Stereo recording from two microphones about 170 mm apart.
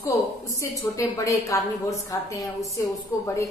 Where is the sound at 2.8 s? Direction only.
15° left (ahead or behind).